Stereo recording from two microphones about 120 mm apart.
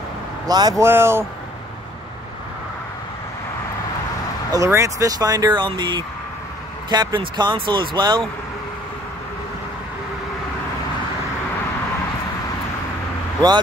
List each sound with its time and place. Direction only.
0.5 s speech: 30° right (ahead or behind)
0.8 s a man's voice: 20° right (ahead or behind)
4.5 s speech: 25° right (ahead or behind); by 8.2 s 40° right (ahead or behind)